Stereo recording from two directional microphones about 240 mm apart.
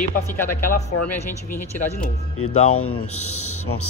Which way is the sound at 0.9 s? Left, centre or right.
Left.